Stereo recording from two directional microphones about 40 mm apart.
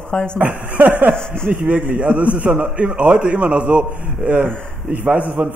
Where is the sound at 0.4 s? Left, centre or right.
Right.